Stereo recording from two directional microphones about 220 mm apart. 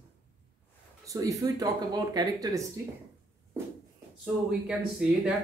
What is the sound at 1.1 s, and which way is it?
Speech, 15° right (ahead or behind).